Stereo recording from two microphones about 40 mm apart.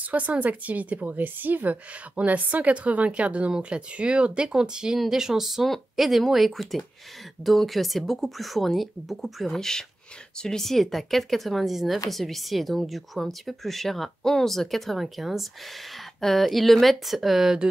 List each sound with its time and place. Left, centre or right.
0.1 s a woman's voice: right; by 9.6 s centre
9.6 s speech: centre